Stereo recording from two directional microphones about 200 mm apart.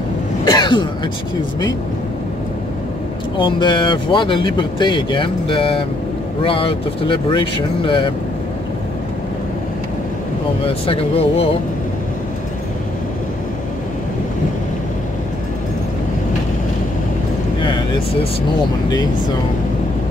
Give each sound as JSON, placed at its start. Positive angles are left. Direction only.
{"t": 0.5, "sound": "throat clearing", "side_deg": 20}
{"t": 3.3, "sound": "speech", "side_deg": 25}
{"t": 10.6, "sound": "speech", "side_deg": 25}
{"t": 17.6, "sound": "vehicle", "side_deg": 25}